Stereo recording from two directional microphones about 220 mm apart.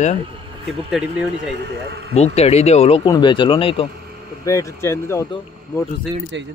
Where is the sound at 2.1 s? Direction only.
30° left (ahead or behind).